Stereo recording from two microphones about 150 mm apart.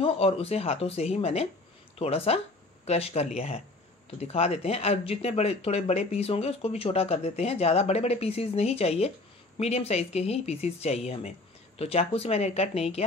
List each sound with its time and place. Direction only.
0.0 s speech: 40° left (ahead or behind)